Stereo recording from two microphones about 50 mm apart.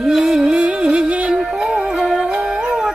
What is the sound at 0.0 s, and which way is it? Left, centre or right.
Music, centre.